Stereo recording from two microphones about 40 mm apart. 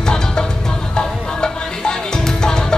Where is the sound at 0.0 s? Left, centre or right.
Centre.